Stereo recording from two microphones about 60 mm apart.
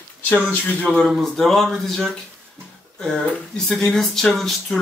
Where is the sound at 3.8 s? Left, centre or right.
Centre.